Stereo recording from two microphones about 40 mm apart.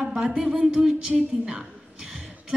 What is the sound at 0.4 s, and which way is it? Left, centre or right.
Speech, centre.